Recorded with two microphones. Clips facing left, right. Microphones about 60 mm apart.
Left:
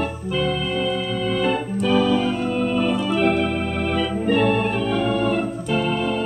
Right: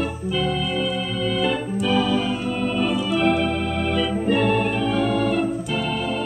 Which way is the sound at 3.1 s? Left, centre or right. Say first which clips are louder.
Right 1 dB; left.